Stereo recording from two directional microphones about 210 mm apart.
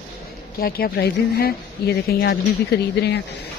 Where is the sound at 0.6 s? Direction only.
45° left (ahead or behind).